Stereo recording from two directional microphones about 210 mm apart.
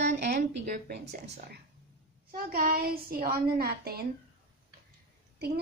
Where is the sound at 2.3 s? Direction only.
45° right (ahead or behind).